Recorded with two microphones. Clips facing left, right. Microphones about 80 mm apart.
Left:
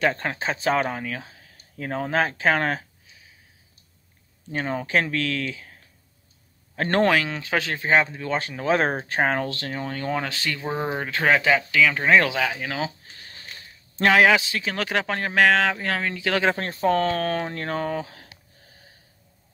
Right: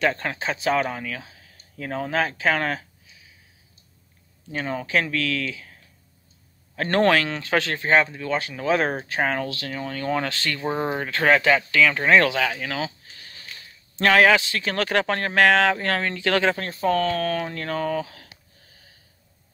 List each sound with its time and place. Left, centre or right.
0.0 s speech: left
4.5 s speech: left
6.7 s a man's voice: left
7.1 s speech: centre
8.2 s speech: left
10.0 s speech: centre
12.3 s a sound: centre
13.9 s speech: centre
16.5 s speech: left